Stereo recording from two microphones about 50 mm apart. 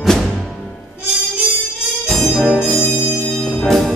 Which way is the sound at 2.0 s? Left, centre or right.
Centre.